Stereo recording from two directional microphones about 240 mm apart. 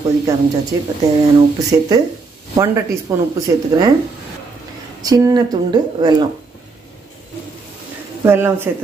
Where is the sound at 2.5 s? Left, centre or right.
Centre.